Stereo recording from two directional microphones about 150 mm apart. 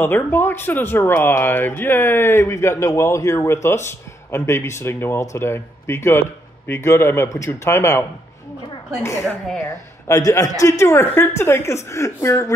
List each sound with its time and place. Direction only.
0.0 s speech: 15° left (ahead or behind)
9.6 s a man's voice: 20° left (ahead or behind)